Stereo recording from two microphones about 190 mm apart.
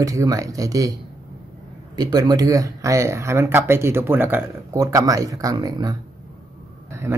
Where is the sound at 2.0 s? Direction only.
20° right (ahead or behind).